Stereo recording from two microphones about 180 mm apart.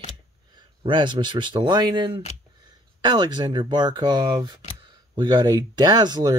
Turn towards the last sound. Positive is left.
turn(degrees=-25)  # may be behind; listen again after turning